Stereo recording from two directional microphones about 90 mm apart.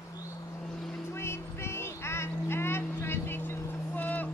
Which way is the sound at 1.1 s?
30° left (ahead or behind).